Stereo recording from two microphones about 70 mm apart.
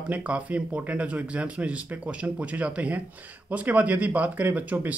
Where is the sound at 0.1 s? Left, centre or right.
Right.